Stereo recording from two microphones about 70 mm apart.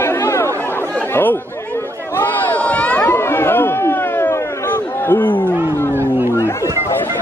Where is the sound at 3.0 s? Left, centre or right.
Left.